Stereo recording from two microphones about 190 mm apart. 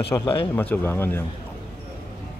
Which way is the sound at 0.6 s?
10° left (ahead or behind).